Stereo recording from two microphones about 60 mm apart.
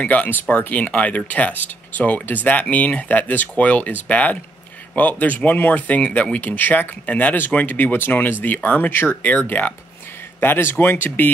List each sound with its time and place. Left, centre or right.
0.0 s speech: left